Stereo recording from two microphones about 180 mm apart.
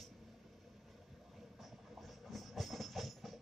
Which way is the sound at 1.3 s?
Centre (ahead or behind).